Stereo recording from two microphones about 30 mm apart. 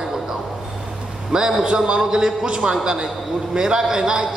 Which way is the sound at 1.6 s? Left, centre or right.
Right.